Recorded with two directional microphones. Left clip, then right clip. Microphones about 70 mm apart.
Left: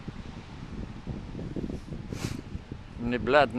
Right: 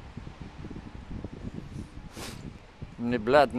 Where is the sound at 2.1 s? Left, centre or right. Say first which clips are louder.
Left 3 dB; right.